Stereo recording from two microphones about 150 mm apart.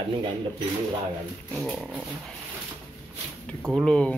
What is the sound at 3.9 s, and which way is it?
Speech, 5° left (ahead or behind).